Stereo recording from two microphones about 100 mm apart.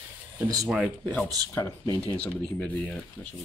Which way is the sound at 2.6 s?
15° left (ahead or behind).